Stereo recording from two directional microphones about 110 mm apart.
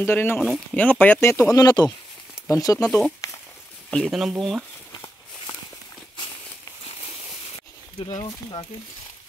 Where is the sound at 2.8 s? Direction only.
10° left (ahead or behind).